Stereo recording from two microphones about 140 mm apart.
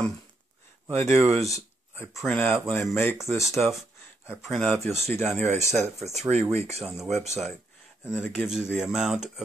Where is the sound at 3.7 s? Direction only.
Centre (ahead or behind).